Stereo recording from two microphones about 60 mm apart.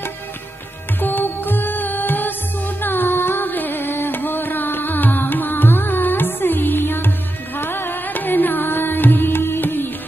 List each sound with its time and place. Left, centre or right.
1.0 s music: left